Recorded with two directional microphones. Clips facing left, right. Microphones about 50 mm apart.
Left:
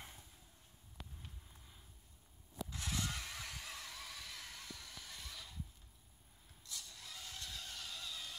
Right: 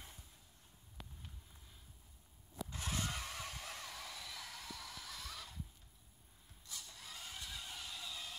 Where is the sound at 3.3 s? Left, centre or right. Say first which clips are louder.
Right 2 dB; centre.